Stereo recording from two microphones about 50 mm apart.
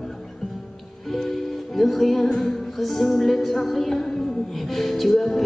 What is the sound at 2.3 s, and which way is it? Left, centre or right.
Music, centre.